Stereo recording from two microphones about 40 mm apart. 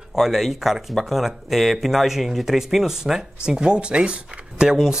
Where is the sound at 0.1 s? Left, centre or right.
Centre; by 4.6 s right.